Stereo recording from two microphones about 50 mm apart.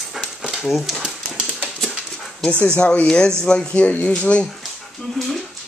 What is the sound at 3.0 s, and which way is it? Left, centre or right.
Speech, centre.